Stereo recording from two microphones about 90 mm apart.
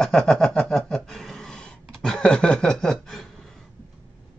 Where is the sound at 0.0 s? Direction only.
5° left (ahead or behind).